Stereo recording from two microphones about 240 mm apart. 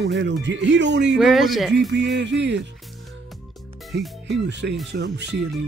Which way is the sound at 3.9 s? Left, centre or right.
Right.